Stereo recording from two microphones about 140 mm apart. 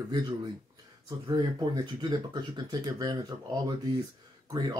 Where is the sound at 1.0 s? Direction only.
30° right (ahead or behind).